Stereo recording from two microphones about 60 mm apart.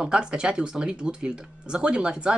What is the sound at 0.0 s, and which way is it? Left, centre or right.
Speech, centre.